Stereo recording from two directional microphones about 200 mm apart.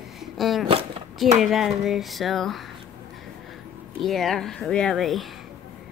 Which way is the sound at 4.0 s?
Centre (ahead or behind).